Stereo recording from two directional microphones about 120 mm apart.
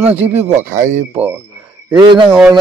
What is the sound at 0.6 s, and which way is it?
Speech, 90° right.